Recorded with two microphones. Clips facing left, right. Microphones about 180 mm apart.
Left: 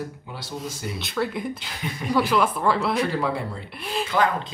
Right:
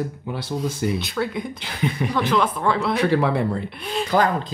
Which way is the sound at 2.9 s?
65° right (ahead or behind).